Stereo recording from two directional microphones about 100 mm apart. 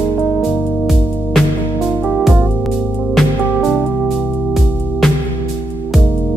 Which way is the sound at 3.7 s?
Centre (ahead or behind).